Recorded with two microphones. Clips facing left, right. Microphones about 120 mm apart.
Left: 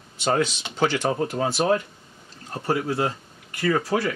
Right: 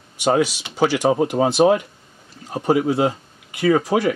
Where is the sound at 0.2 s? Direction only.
10° right (ahead or behind).